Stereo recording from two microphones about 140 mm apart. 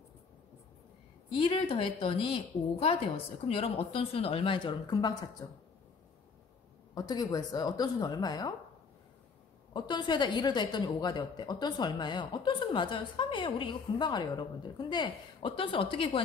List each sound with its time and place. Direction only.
1.3 s a woman's voice: 40° left (ahead or behind)
7.0 s a woman's voice: 30° left (ahead or behind)
9.8 s a woman's voice: 30° left (ahead or behind)